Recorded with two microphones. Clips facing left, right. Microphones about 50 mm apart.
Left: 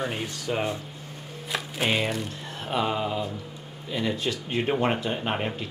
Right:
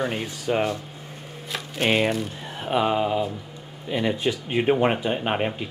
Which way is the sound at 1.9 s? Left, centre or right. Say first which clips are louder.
Right 5 dB; centre.